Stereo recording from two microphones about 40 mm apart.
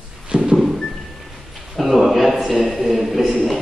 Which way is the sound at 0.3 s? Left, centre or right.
Right.